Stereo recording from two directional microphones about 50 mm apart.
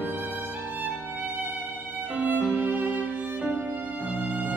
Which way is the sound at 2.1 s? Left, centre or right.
Right.